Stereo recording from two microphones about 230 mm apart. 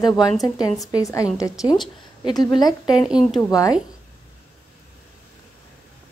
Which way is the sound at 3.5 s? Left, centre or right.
Centre.